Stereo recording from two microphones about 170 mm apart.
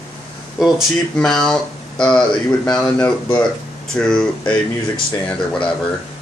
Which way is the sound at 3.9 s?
5° left (ahead or behind).